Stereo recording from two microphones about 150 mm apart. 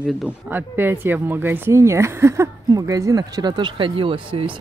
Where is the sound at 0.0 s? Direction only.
10° right (ahead or behind).